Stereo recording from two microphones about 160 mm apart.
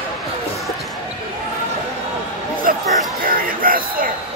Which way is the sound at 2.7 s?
60° right (ahead or behind).